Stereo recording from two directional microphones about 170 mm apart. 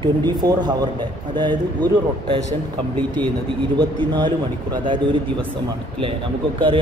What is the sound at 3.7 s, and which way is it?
A man's voice, 25° right (ahead or behind).